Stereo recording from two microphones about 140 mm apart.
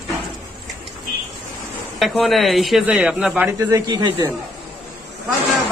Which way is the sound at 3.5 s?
20° right (ahead or behind).